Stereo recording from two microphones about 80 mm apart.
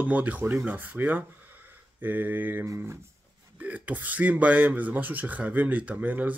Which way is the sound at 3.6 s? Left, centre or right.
Centre.